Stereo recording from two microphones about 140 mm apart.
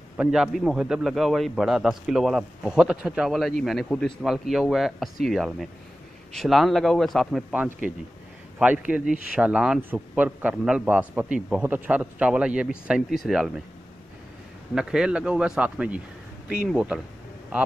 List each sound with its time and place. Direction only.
0.2 s a man's voice: 5° right (ahead or behind)
7.5 s a man's voice: 10° right (ahead or behind)
14.8 s a man's voice: 5° right (ahead or behind)